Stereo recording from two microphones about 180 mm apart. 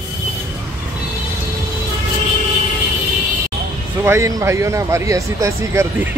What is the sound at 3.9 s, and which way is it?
Speech, 10° right (ahead or behind).